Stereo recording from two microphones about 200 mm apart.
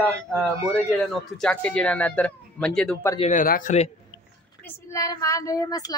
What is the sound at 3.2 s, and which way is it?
Speech, 40° left (ahead or behind).